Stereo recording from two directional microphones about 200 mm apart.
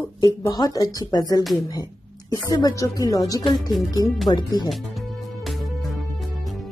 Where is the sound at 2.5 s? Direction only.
15° left (ahead or behind).